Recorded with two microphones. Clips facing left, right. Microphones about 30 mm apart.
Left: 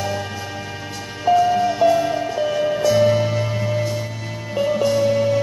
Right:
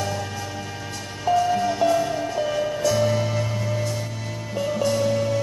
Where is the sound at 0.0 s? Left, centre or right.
Centre.